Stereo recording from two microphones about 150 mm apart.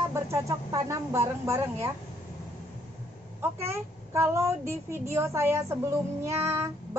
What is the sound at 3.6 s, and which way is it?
A child's voice, 20° right (ahead or behind).